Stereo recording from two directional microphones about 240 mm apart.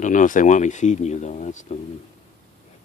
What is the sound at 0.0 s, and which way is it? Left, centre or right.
Speech, left.